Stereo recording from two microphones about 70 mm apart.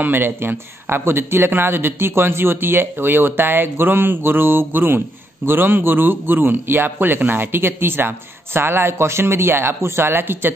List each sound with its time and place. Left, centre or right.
0.0 s speech: right